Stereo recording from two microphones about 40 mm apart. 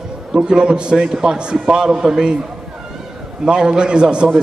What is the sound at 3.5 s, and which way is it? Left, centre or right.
Speech, right.